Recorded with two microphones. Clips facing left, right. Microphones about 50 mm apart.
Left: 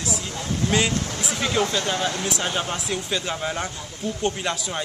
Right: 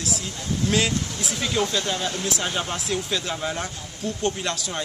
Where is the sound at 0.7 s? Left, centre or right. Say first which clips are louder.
Even; centre.